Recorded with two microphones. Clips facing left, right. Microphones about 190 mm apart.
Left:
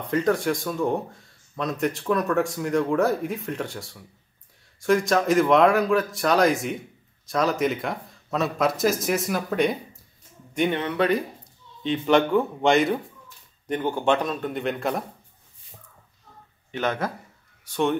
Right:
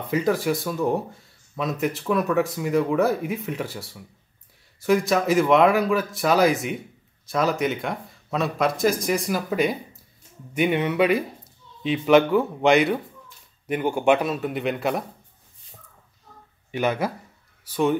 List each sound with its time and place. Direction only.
0.1 s a man's voice: 5° right (ahead or behind)
16.7 s a man's voice: 10° right (ahead or behind)